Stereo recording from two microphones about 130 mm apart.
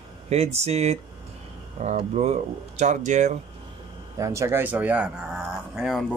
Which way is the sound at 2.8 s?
70° right (ahead or behind).